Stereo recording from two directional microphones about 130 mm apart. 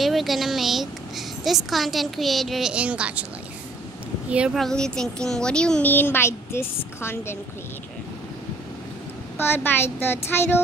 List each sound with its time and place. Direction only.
0.0 s a woman's voice: centre (ahead or behind)
4.6 s speech: 5° left (ahead or behind)
9.4 s speech: 15° left (ahead or behind)